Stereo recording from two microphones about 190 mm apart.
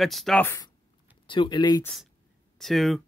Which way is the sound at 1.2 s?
25° left (ahead or behind).